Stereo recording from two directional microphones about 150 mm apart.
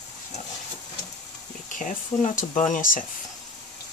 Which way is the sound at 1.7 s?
60° left (ahead or behind).